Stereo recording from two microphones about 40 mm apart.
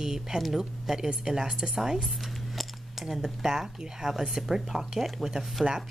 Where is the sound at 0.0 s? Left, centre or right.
Centre.